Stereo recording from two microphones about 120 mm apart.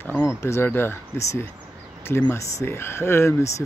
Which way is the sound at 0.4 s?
20° left (ahead or behind).